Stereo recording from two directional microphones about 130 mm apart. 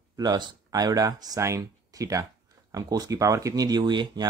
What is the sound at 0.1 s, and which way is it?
Speech, 30° right (ahead or behind).